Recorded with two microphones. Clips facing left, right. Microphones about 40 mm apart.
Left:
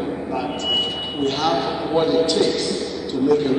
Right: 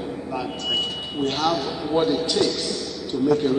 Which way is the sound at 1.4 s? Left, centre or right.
Left.